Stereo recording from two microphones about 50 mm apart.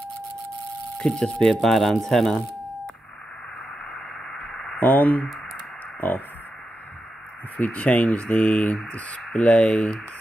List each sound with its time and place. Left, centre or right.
0.9 s speech: centre
3.9 s radio: centre
4.7 s speech: left
7.5 s speech: left